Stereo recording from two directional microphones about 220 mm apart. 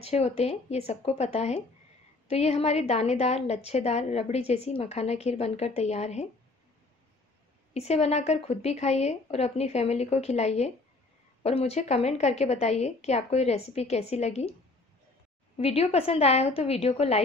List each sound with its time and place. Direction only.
0.0 s a woman's voice: 30° left (ahead or behind)
7.7 s a woman's voice: 30° left (ahead or behind)
15.5 s a woman's voice: 25° left (ahead or behind)